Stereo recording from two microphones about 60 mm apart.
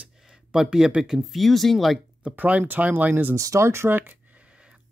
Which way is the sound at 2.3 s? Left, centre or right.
Right.